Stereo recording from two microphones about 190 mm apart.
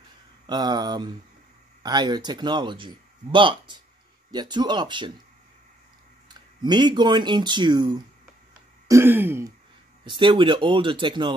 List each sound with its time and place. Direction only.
0.5 s speech: 20° right (ahead or behind)
6.2 s speech: 25° right (ahead or behind)
8.8 s throat clearing: 15° right (ahead or behind)
10.0 s speech: 25° right (ahead or behind)